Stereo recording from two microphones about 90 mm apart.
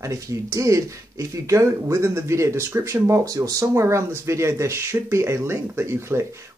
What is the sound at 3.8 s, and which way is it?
Speech, 30° right (ahead or behind).